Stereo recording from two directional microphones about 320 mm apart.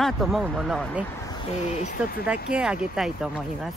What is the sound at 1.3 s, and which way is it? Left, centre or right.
Speech, left.